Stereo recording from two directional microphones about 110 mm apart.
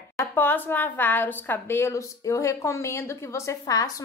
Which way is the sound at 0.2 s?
20° left (ahead or behind).